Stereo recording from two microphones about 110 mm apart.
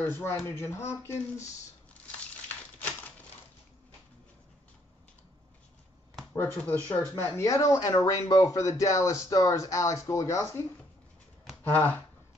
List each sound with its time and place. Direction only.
0.0 s speech: 20° left (ahead or behind)
2.0 s a sound: 15° left (ahead or behind)
6.3 s speech: 20° left (ahead or behind)
7.2 s speech: 25° left (ahead or behind)
11.6 s speech: 15° left (ahead or behind)